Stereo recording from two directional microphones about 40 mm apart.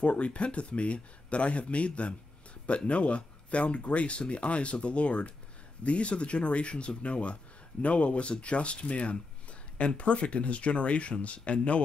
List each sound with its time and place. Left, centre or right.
0.0 s speech: left